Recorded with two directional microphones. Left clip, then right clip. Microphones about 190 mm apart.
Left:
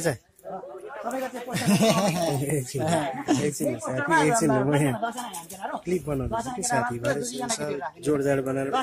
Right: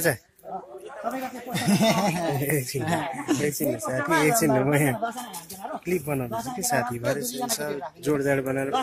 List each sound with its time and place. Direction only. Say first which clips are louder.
1.8 s speech: left 1 dB; 40° left (ahead or behind)
2.4 s speech: right 2 dB; centre (ahead or behind)
2.8 s speech: left 2 dB; 55° left (ahead or behind)
3.5 s speech: right 1 dB; centre (ahead or behind)